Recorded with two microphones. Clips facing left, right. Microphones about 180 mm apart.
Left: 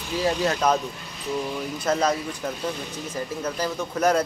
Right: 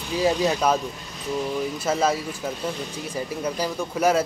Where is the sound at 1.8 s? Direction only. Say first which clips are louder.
Left 2 dB; 5° right (ahead or behind).